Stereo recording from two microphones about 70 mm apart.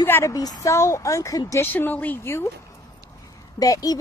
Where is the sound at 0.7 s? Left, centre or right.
Left.